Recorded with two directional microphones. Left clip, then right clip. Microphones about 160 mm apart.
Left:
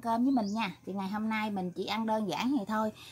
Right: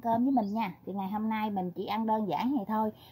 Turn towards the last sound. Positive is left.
turn(degrees=-35)  # may be behind; listen again after turning